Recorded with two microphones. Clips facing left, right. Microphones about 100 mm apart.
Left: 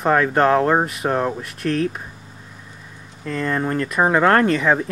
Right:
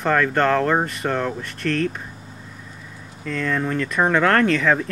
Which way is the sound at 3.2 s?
5° left (ahead or behind).